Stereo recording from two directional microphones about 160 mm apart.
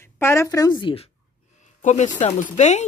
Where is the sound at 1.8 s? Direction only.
50° left (ahead or behind).